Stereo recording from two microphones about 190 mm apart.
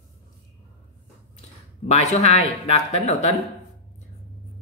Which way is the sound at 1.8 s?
35° left (ahead or behind).